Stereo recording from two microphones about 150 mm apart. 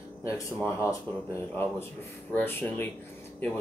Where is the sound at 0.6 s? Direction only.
20° left (ahead or behind).